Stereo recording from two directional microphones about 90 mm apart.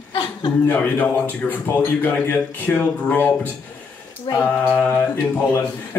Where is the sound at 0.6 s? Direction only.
15° left (ahead or behind).